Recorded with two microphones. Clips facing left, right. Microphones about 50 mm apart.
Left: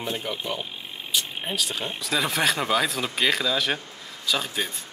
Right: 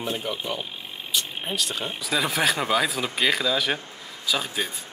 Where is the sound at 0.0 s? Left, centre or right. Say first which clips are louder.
Right 1 dB; centre.